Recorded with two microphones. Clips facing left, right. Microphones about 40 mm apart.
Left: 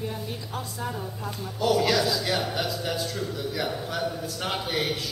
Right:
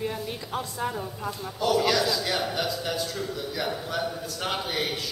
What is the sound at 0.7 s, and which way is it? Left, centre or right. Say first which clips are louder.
Speech: right 2 dB; centre.